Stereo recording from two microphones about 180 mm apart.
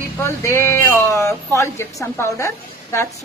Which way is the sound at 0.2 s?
15° left (ahead or behind).